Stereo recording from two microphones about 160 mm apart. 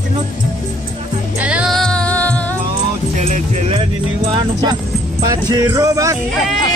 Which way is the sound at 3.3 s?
45° right (ahead or behind).